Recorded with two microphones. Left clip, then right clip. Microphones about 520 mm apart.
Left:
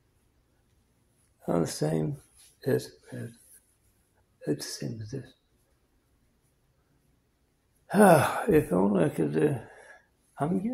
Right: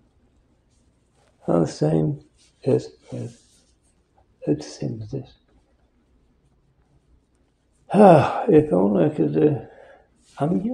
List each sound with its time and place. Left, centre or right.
1.4 s speech: left
4.4 s speech: left
7.8 s speech: left